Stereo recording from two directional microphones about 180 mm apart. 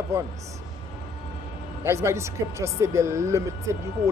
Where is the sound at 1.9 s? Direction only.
15° right (ahead or behind).